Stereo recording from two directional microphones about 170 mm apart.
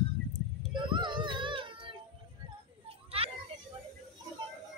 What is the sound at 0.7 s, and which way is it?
Child singing, 30° right (ahead or behind).